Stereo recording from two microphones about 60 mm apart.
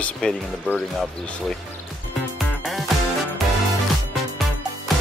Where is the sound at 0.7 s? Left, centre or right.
Centre.